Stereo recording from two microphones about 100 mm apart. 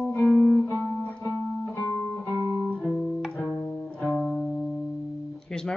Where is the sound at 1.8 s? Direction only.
25° left (ahead or behind).